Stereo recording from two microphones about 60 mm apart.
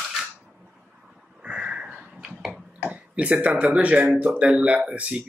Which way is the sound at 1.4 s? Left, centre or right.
Centre.